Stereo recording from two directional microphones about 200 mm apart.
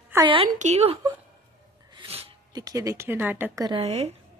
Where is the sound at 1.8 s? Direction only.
25° right (ahead or behind).